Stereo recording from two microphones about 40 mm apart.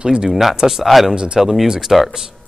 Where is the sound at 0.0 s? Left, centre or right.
Centre.